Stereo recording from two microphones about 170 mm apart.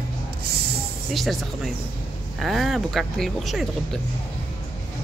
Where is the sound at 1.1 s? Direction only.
Centre (ahead or behind).